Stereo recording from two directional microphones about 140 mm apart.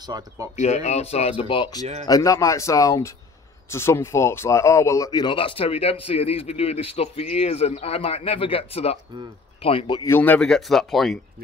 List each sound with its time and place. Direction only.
0.0 s speech: 30° right (ahead or behind)
0.6 s speech: 55° left (ahead or behind); by 10.0 s 35° left (ahead or behind)
10.0 s speech: 15° left (ahead or behind)